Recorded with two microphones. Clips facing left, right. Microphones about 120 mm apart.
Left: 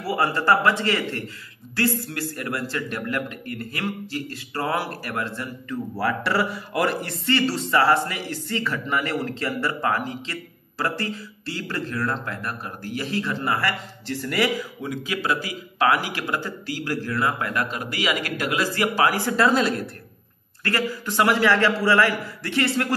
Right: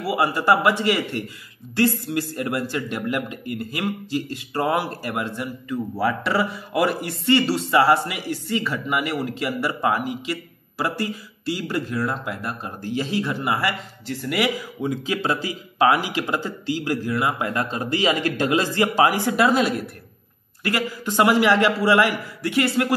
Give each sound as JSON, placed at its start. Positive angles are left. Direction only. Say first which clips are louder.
{"t": 0.0, "sound": "speech", "louder": "right 1 dB", "side_deg": -10}
{"t": 14.9, "sound": "a man's voice", "louder": "right 2 dB", "side_deg": -25}